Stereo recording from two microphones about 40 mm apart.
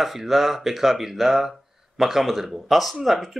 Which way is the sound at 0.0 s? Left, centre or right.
Centre.